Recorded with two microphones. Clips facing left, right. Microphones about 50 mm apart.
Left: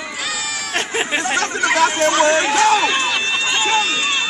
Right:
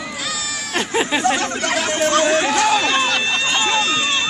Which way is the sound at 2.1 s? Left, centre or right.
Centre.